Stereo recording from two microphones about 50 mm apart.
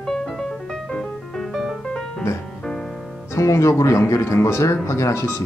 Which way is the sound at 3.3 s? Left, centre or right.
Left.